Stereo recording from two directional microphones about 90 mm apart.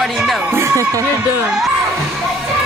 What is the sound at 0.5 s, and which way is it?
Speech, 35° right (ahead or behind).